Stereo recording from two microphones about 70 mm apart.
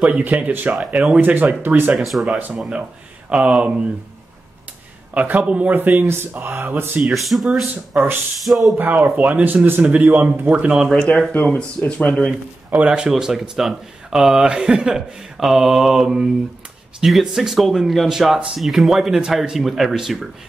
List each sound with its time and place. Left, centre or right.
0.2 s speech: right
0.7 s speech: centre
1.2 s speech: right
2.0 s speech: centre
2.3 s speech: right
5.1 s speech: centre
7.2 s speech: centre
7.9 s speech: right
8.5 s speech: centre
9.2 s speech: right
10.7 s speech: centre
11.1 s speech: left
12.7 s speech: centre